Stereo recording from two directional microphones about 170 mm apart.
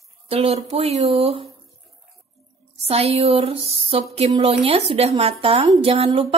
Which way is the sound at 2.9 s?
35° right (ahead or behind).